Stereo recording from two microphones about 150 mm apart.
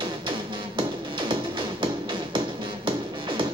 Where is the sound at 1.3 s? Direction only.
35° right (ahead or behind).